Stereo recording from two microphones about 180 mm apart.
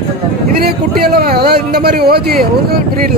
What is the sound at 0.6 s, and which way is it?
A man's voice, 60° right (ahead or behind).